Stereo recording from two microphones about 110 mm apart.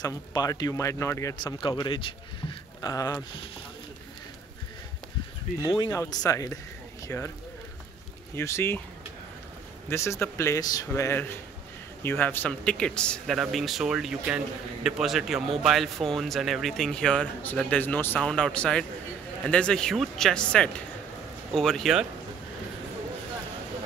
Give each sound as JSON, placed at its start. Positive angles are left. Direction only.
{"t": 0.0, "sound": "speech", "side_deg": 35}
{"t": 1.4, "sound": "speech", "side_deg": 40}
{"t": 5.9, "sound": "speech", "side_deg": 35}
{"t": 7.1, "sound": "a man's voice", "side_deg": 15}
{"t": 8.4, "sound": "speech", "side_deg": 25}
{"t": 9.8, "sound": "speech", "side_deg": 25}
{"t": 10.6, "sound": "a man's voice", "side_deg": 35}